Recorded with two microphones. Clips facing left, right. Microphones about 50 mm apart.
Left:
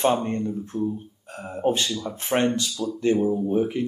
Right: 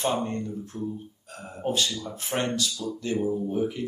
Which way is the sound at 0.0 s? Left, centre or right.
Left.